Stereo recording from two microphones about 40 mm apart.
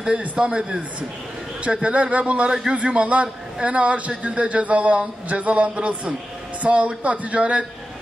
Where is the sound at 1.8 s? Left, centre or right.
Right.